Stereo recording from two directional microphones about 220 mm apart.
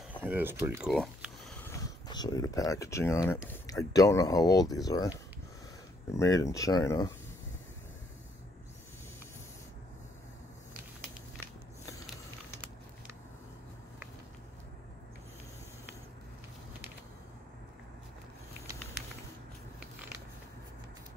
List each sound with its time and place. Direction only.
0.2 s speech: 10° right (ahead or behind)
1.7 s speech: 15° left (ahead or behind)
6.1 s speech: 15° left (ahead or behind)